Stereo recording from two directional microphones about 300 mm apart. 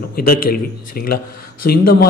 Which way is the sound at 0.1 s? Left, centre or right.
Left.